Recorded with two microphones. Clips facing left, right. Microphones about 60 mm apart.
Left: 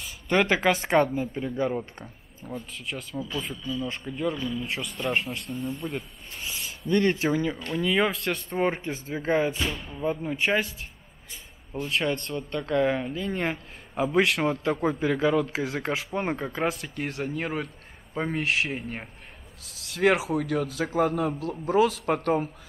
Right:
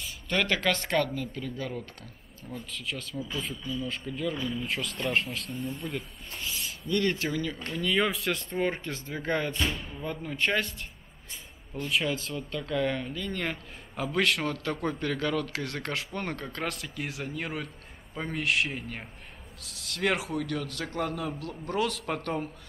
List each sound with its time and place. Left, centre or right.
0.3 s speech: centre
2.8 s a man's voice: centre
6.5 s a sound: centre
6.9 s speech: left
7.7 s a man's voice: centre
8.5 s a man's voice: centre
9.7 s a man's voice: centre
10.0 s a man's voice: centre
11.9 s a man's voice: centre